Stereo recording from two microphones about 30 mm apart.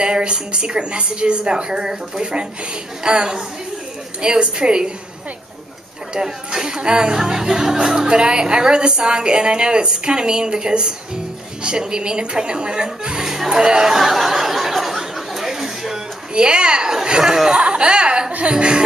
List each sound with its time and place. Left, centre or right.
0.0 s a woman's voice: right
6.1 s speech: right
13.9 s a sound: centre
16.3 s speech: right
17.2 s speech: centre
17.5 s a woman's voice: right